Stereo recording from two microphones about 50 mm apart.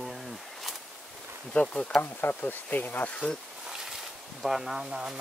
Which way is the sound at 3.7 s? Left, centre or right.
Centre.